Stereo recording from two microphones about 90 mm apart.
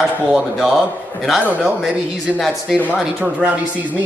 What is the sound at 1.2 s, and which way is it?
Speech, centre (ahead or behind).